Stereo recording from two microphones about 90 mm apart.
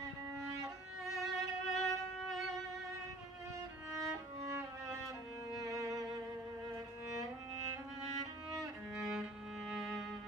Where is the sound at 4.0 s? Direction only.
30° right (ahead or behind).